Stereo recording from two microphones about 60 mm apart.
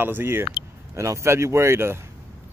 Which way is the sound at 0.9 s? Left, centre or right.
Right.